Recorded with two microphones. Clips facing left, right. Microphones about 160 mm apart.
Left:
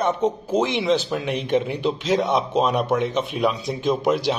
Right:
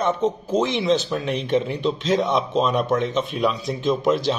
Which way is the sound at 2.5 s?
15° left (ahead or behind).